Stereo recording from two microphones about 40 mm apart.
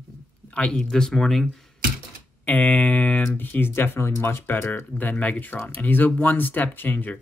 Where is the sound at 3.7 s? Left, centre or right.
Left.